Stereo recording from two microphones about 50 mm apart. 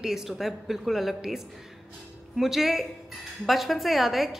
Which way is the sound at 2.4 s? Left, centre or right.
Centre.